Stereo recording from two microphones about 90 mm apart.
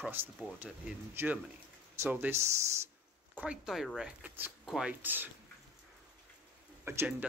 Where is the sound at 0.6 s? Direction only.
10° right (ahead or behind); by 2.8 s 30° right (ahead or behind).